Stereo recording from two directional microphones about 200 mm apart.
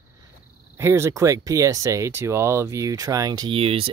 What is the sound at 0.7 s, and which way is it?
Speech, 15° right (ahead or behind).